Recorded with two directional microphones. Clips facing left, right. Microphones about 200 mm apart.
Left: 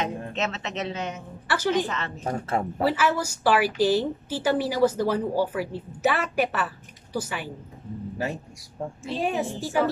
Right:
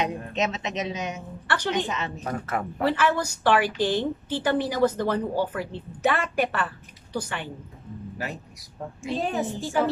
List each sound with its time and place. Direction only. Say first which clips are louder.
0.0 s a man's voice: right 2 dB; 15° right (ahead or behind)
1.5 s a woman's voice: left 2 dB; 5° left (ahead or behind)
1.9 s a man's voice: right 1 dB; 15° right (ahead or behind)
2.2 s speech: left 4 dB; 30° left (ahead or behind)
2.8 s a woman's voice: right 1 dB; 5° left (ahead or behind)
9.2 s a woman's voice: left 2 dB; 10° left (ahead or behind)